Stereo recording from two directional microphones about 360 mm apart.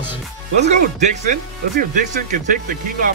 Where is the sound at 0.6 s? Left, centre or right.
Centre.